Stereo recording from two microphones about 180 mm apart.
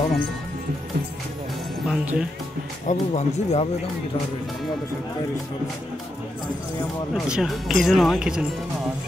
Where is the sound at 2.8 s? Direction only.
40° left (ahead or behind).